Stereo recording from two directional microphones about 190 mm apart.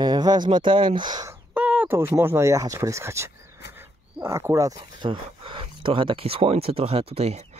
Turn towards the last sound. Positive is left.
turn(degrees=-35)  # may be behind; listen again after turning